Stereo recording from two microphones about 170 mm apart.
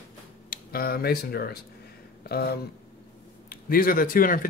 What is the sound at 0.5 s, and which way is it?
Speech, 60° left (ahead or behind).